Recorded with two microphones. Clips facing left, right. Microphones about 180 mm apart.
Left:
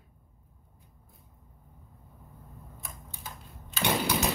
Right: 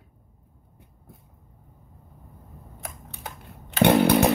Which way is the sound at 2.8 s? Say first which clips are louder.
Right 7 dB; 65° right (ahead or behind).